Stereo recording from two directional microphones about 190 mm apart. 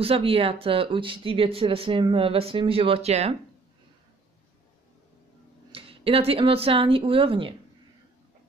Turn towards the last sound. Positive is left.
turn(degrees=-30)  # may be behind; listen again after turning